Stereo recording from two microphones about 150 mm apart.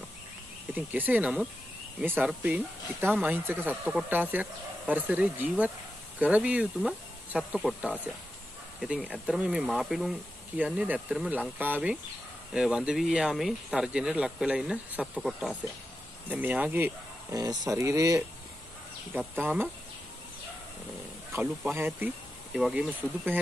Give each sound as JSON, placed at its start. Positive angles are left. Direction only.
{"t": 0.7, "sound": "speech", "side_deg": -10}
{"t": 17.3, "sound": "speech", "side_deg": -25}
{"t": 21.7, "sound": "speech", "side_deg": -15}